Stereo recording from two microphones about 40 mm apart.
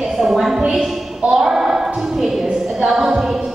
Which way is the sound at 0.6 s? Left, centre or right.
Right.